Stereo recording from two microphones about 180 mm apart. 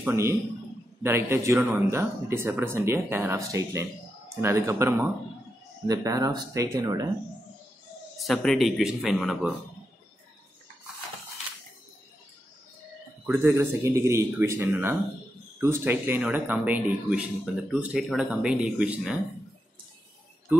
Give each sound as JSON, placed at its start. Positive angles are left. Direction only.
{"t": 0.0, "sound": "a man's voice", "side_deg": -15}
{"t": 8.2, "sound": "speech", "side_deg": 0}
{"t": 13.3, "sound": "speech", "side_deg": -10}